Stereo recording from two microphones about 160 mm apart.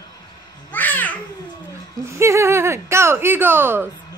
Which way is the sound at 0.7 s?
10° left (ahead or behind).